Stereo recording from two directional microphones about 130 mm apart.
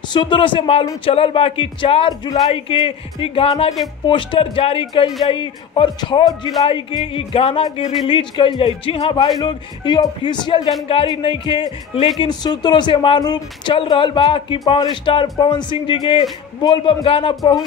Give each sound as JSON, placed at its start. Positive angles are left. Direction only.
{"t": 0.1, "sound": "speech", "side_deg": 40}